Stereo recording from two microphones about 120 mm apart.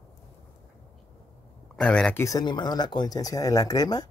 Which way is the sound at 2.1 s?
30° left (ahead or behind).